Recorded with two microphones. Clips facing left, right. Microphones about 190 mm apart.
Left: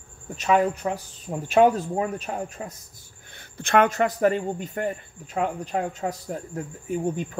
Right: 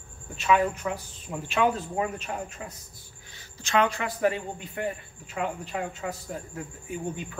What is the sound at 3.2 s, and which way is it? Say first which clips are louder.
A man's voice: left 7 dB; 55° left (ahead or behind).